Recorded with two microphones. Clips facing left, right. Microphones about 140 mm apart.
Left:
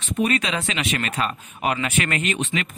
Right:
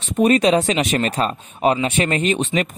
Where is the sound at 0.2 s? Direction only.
35° right (ahead or behind).